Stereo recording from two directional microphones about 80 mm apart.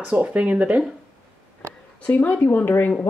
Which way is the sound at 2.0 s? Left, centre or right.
Left.